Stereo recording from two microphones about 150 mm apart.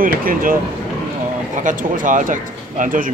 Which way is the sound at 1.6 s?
60° right (ahead or behind).